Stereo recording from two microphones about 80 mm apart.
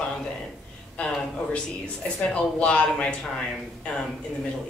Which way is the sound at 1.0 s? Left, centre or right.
Centre.